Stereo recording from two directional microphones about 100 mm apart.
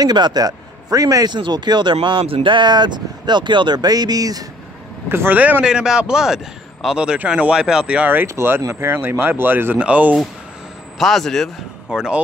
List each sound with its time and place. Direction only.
0.0 s speech: 45° right (ahead or behind)
2.0 s speech: 70° right (ahead or behind); by 4.5 s 40° right (ahead or behind)
5.1 s a man's voice: 20° right (ahead or behind)
11.0 s a man's voice: centre (ahead or behind)